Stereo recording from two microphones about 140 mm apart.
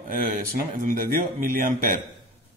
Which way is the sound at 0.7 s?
80° right.